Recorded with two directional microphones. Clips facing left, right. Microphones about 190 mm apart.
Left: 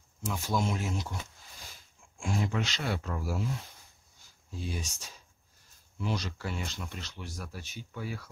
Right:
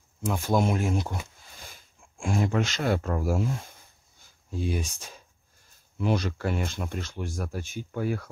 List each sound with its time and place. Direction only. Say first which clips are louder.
0.3 s speech: right 7 dB; 55° right (ahead or behind)
2.1 s speech: right 6 dB; 50° right (ahead or behind)